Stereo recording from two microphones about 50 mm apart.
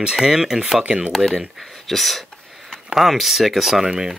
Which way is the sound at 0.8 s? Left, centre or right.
Right.